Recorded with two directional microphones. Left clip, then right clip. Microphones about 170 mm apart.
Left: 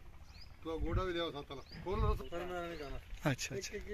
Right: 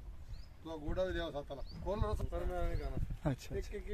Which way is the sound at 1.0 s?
45° right (ahead or behind).